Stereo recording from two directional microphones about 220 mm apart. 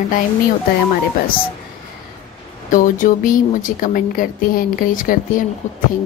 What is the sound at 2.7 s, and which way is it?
Speech, 35° left (ahead or behind).